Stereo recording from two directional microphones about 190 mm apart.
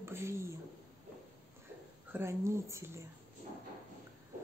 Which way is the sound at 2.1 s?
15° right (ahead or behind).